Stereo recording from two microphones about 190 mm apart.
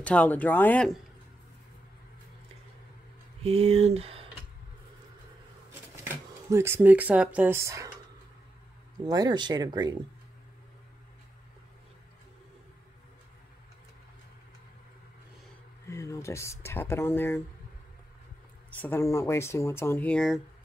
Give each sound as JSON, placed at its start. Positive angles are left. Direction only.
{"t": 0.0, "sound": "speech", "side_deg": 5}
{"t": 3.4, "sound": "speech", "side_deg": -30}
{"t": 5.7, "sound": "speech", "side_deg": -10}
{"t": 9.0, "sound": "speech", "side_deg": -20}
{"t": 15.9, "sound": "speech", "side_deg": 15}
{"t": 18.8, "sound": "speech", "side_deg": 10}